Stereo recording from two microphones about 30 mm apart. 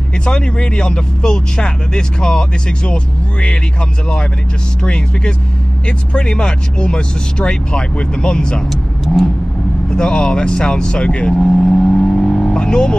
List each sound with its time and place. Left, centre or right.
0.2 s speech: left
4.8 s speech: left
9.0 s vehicle: centre
9.8 s speech: left
11.7 s vehicle: left